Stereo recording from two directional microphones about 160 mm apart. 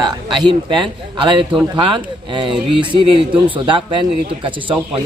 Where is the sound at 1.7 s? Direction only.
30° right (ahead or behind).